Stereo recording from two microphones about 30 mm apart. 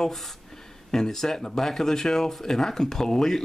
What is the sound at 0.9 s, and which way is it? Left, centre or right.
Speech, centre.